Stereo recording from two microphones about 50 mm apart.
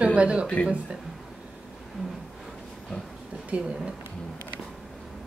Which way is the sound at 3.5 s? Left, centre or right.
Right.